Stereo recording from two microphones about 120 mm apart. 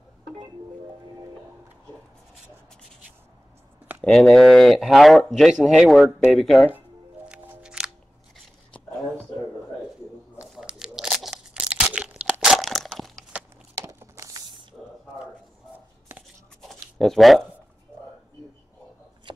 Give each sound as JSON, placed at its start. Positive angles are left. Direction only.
{"t": 4.0, "sound": "speech", "side_deg": 5}
{"t": 7.2, "sound": "music", "side_deg": -10}
{"t": 10.3, "sound": "crunch", "side_deg": -5}
{"t": 13.7, "sound": "crumpling", "side_deg": -25}
{"t": 17.0, "sound": "speech", "side_deg": 0}